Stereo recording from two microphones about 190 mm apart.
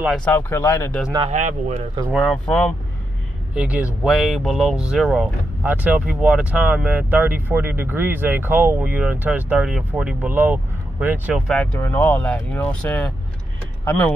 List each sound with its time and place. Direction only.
0.2 s speech: 10° left (ahead or behind)
1.3 s speech: 40° right (ahead or behind)
2.1 s speech: 5° left (ahead or behind)
3.5 s speech: 5° right (ahead or behind)